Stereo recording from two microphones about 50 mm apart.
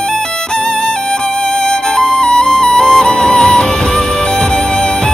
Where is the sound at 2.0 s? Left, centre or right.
Centre.